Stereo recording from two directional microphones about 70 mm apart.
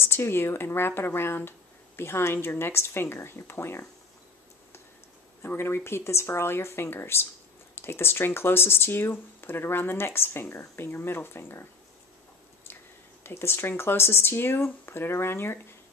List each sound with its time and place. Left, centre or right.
0.0 s speech: left
5.5 s speech: left
13.2 s speech: left